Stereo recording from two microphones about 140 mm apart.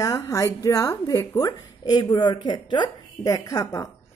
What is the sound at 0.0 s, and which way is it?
Speech, 20° left (ahead or behind).